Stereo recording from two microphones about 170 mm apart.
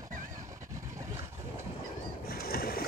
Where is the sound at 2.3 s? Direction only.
60° left (ahead or behind).